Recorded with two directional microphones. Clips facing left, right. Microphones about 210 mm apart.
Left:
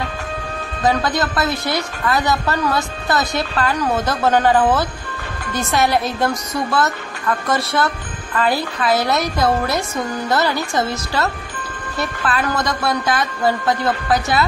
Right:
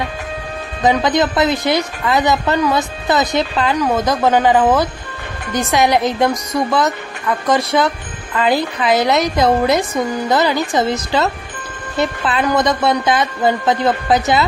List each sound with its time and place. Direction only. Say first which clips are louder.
0.8 s a woman's voice: right 4 dB; 20° right (ahead or behind)